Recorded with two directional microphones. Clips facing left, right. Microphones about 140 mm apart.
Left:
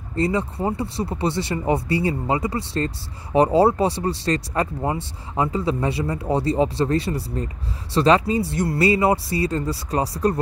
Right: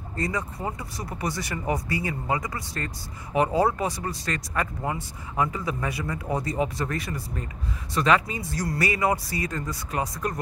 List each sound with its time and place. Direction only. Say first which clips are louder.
0.1 s speech: left 8 dB; 25° left (ahead or behind)